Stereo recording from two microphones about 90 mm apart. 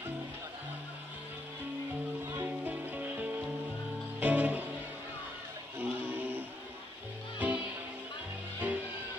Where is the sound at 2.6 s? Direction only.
20° right (ahead or behind).